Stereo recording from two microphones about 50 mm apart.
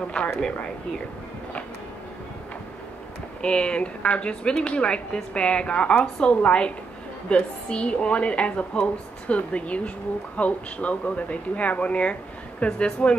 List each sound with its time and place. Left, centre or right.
0.4 s speech: centre
3.4 s speech: left